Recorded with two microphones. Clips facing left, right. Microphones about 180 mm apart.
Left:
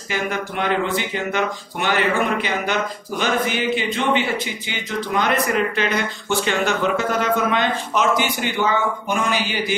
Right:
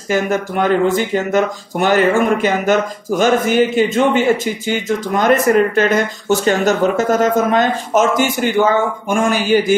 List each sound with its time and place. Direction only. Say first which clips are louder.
0.1 s speech: right 8 dB; 45° right (ahead or behind)